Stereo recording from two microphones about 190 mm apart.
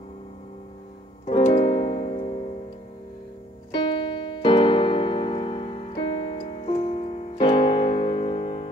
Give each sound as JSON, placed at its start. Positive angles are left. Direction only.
{"t": 1.2, "sound": "keyboard", "side_deg": 30}
{"t": 3.7, "sound": "keyboard", "side_deg": 25}